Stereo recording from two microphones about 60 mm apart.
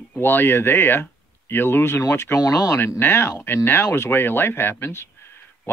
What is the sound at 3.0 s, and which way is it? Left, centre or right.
Speech, left.